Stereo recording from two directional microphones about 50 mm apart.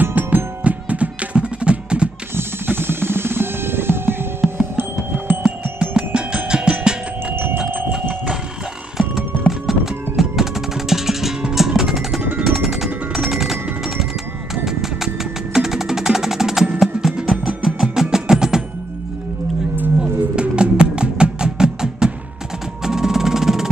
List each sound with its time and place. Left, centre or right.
0.0 s music: right
2.3 s drum kit: right
4.6 s music: right
5.8 s music: centre
7.5 s a sound: right
9.5 s music: centre
12.2 s music: right
12.4 s music: centre
14.5 s a sound: centre
15.5 s music: centre
20.0 s music: centre